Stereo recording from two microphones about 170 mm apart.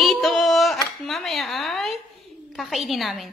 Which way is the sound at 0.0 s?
Centre (ahead or behind).